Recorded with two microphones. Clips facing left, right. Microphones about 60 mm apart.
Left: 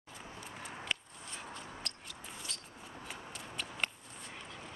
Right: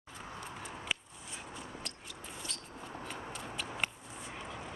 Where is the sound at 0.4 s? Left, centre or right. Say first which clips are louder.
Even; centre.